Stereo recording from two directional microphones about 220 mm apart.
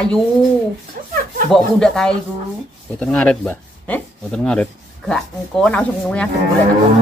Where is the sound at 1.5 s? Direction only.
Centre (ahead or behind).